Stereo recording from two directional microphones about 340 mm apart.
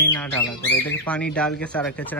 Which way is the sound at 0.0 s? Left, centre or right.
Centre.